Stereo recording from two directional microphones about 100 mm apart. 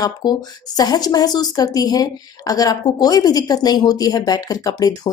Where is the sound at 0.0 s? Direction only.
40° left (ahead or behind).